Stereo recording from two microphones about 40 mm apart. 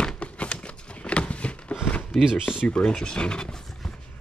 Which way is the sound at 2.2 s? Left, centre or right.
Centre.